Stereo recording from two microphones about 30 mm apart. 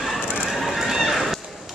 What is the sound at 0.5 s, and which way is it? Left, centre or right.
Run, centre.